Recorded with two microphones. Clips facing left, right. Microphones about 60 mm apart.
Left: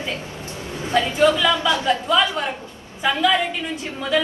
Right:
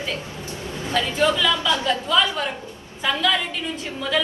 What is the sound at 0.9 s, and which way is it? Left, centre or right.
A woman's voice, left.